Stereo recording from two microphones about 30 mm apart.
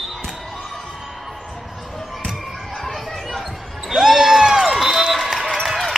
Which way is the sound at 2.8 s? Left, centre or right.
Centre.